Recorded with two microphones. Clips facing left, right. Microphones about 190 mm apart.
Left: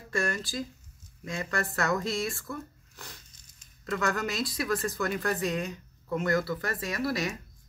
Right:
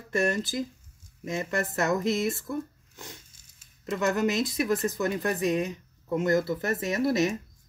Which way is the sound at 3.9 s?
20° right (ahead or behind).